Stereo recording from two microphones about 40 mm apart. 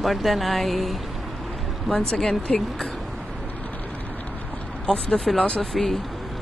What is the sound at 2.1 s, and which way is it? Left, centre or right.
Speech, centre.